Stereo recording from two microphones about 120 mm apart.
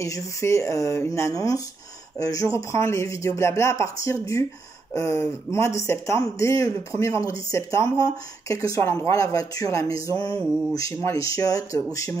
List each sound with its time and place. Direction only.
0.0 s speech: 25° left (ahead or behind)